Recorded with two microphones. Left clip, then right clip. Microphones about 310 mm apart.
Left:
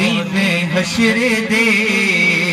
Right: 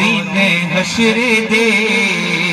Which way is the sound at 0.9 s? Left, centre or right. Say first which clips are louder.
Right 2 dB; right.